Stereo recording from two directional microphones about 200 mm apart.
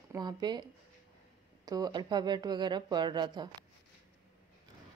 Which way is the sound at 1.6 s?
20° right (ahead or behind).